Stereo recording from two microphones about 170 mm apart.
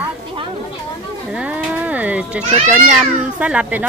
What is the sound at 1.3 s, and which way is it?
Speech, 10° right (ahead or behind).